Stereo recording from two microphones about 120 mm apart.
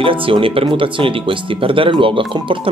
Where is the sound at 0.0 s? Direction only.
45° right (ahead or behind).